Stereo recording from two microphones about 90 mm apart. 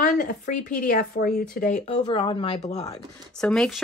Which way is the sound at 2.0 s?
65° left (ahead or behind).